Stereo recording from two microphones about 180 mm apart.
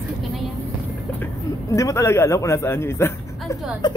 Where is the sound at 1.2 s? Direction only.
15° left (ahead or behind).